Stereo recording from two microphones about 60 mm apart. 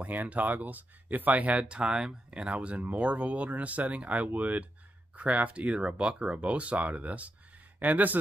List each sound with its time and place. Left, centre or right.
0.0 s speech: right